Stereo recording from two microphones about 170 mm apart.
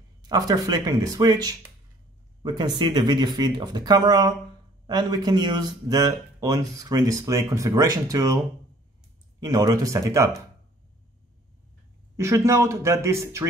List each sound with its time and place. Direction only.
0.3 s speech: 20° right (ahead or behind)
9.4 s speech: 20° right (ahead or behind)
12.2 s speech: 15° right (ahead or behind)